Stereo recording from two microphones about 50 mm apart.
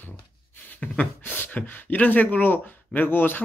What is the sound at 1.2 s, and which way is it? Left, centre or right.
Speech, left.